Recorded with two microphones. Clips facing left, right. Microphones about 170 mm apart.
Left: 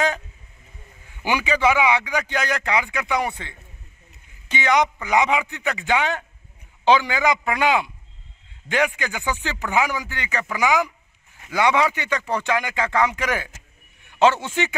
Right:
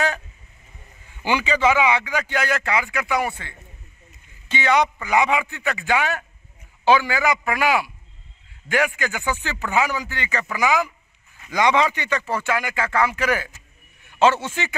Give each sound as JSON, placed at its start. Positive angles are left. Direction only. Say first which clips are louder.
{"t": 1.2, "sound": "a man's voice", "louder": "even", "side_deg": 10}